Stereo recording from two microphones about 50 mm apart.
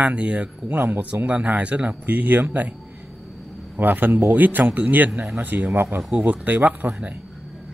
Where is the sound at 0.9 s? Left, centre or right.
Right.